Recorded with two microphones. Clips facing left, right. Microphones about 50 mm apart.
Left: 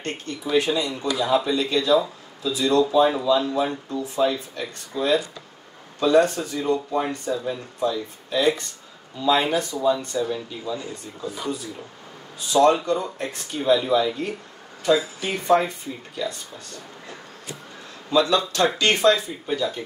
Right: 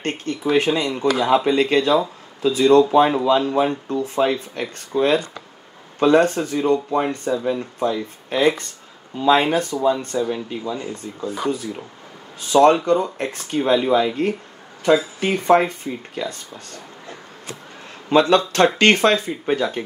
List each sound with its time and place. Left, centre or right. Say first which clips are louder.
0.0 s speech: right 6 dB; right
18.1 s speech: right 5 dB; right